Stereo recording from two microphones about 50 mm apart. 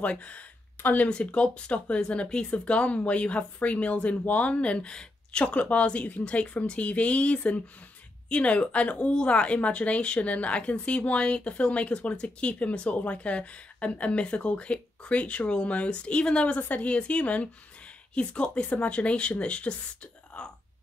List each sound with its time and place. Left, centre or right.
0.0 s speech: left